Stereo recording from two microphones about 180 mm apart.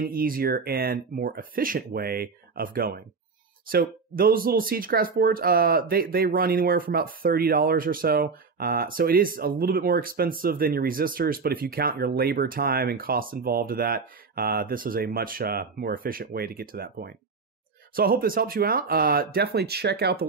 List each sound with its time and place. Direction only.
0.0 s speech: 55° right (ahead or behind)